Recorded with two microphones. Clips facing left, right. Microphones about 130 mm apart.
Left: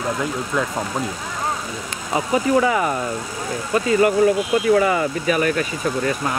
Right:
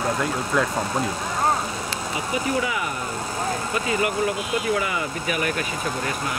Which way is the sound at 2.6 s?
45° left (ahead or behind).